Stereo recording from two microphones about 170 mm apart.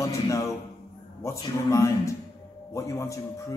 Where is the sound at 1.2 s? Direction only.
20° left (ahead or behind).